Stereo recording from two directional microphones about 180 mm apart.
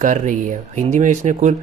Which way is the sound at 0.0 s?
45° right (ahead or behind).